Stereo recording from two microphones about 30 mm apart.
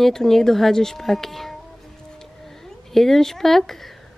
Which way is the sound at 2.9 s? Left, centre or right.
Centre.